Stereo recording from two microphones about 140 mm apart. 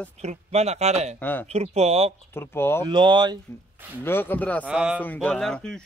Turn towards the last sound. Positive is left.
turn(degrees=5)  # may be behind; listen again after turning